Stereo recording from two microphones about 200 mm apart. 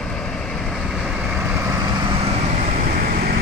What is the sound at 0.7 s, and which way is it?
Vehicle, 5° right (ahead or behind).